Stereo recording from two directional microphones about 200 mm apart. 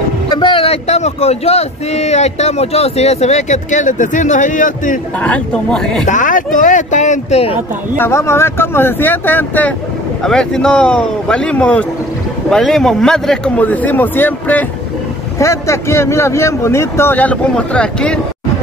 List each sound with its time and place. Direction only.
0.4 s speech: 25° left (ahead or behind)
5.2 s a man's voice: 5° left (ahead or behind)
6.0 s speech: 40° left (ahead or behind)
8.0 s a man's voice: 15° left (ahead or behind)